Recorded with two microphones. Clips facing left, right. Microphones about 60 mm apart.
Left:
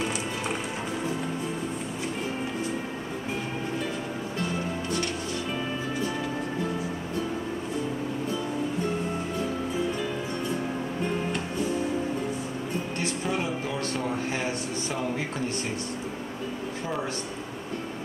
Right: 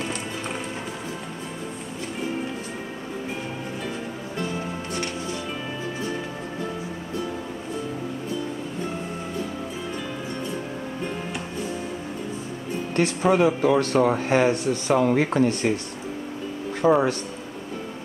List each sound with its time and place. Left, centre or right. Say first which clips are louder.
12.9 s speech: right 12 dB; right
16.8 s a man's voice: right 14 dB; right